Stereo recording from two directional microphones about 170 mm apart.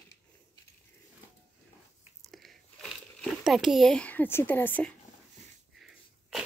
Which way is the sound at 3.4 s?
Centre (ahead or behind).